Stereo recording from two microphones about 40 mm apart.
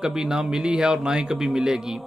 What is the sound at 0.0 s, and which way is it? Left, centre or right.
Speech, centre.